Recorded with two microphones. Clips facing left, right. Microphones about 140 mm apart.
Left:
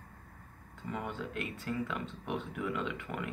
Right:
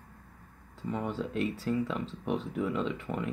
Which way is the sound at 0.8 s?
30° right (ahead or behind).